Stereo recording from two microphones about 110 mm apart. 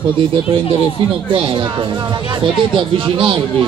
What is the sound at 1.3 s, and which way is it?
Speech, 50° right (ahead or behind).